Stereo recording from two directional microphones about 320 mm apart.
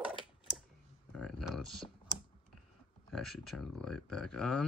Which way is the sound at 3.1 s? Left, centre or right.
Centre.